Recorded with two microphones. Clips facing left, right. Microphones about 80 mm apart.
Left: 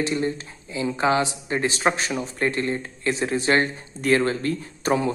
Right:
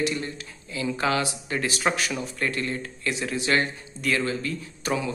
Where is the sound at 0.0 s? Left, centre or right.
Left.